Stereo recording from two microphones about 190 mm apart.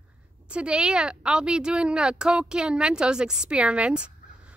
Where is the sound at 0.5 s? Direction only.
5° right (ahead or behind).